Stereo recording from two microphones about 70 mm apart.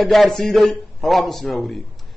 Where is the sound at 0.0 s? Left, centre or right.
Centre.